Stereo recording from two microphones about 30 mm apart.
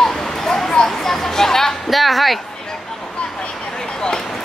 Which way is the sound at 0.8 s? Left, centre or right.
Centre.